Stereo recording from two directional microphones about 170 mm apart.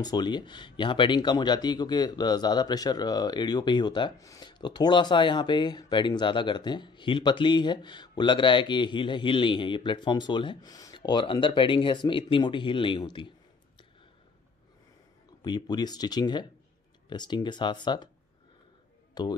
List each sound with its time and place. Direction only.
0.0 s speech: 25° left (ahead or behind)
15.4 s speech: 25° left (ahead or behind)
19.2 s speech: 25° left (ahead or behind)